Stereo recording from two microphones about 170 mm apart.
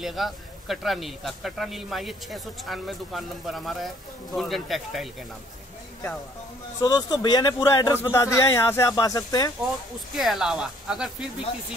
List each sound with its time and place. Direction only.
0.0 s speech: centre (ahead or behind)
6.8 s speech: 25° left (ahead or behind)
10.1 s speech: centre (ahead or behind)